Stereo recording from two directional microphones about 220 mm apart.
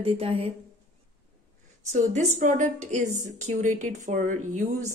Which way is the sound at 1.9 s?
30° right (ahead or behind).